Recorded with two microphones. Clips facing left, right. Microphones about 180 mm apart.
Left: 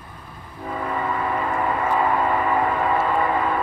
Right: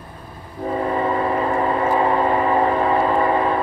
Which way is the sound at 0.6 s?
35° right (ahead or behind).